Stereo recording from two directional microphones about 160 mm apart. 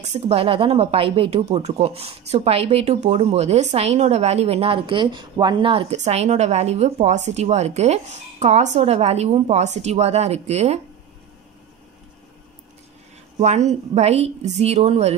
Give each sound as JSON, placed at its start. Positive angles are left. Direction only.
{"t": 0.0, "sound": "a woman's voice", "side_deg": -40}
{"t": 13.4, "sound": "a woman's voice", "side_deg": -45}